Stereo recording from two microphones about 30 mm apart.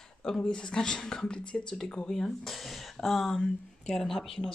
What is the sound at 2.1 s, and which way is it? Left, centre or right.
Speech, centre.